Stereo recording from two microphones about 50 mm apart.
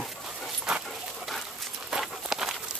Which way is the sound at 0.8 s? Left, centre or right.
Centre.